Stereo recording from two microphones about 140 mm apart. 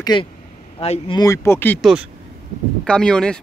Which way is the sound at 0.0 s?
35° left (ahead or behind).